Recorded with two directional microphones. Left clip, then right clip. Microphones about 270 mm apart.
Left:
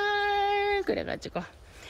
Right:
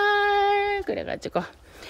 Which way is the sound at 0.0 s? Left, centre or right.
Centre.